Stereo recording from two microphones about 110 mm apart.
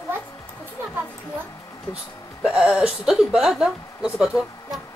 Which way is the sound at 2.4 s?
5° right (ahead or behind).